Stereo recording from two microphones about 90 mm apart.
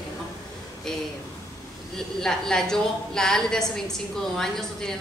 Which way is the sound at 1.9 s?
5° left (ahead or behind).